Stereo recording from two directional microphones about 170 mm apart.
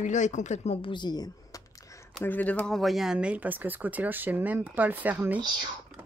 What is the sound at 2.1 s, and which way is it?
Speech, 10° left (ahead or behind).